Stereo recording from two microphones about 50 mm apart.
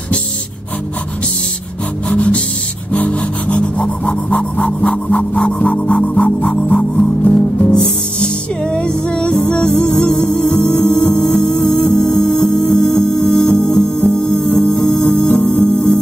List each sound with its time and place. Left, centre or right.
2.1 s music: left
2.9 s rub: left
6.0 s music: left